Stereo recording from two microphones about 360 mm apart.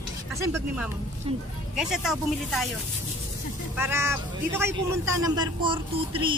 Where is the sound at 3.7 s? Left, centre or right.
Centre.